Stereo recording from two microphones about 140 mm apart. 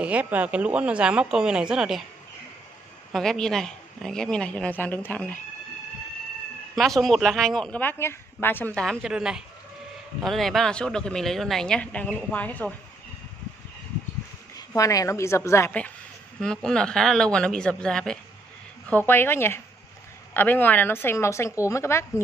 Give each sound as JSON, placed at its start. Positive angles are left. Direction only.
{"t": 0.0, "sound": "speech", "side_deg": -10}
{"t": 3.1, "sound": "speech", "side_deg": 5}
{"t": 6.7, "sound": "speech", "side_deg": 0}
{"t": 9.0, "sound": "speech", "side_deg": -5}
{"t": 14.7, "sound": "a woman's voice", "side_deg": 25}
{"t": 16.3, "sound": "a woman's voice", "side_deg": 5}